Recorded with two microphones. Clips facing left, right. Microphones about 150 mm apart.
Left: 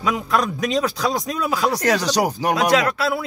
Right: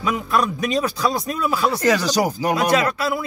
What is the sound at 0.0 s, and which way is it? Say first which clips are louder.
A man's voice: even; 90° left.